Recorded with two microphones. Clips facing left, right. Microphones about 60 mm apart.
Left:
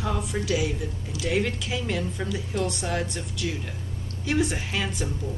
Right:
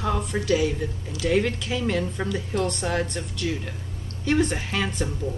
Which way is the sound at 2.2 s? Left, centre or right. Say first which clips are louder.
Right 3 dB; right.